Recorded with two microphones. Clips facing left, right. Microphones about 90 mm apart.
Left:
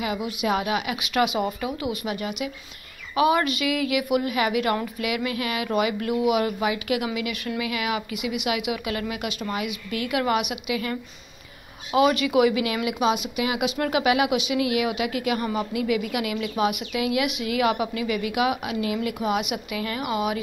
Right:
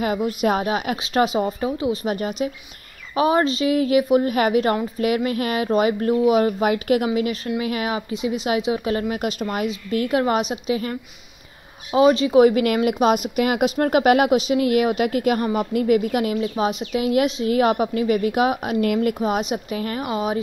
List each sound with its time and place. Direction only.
0.0 s speech: 45° right (ahead or behind); by 5.0 s 25° right (ahead or behind)
5.0 s speech: 40° right (ahead or behind)
12.4 s speech: 45° right (ahead or behind)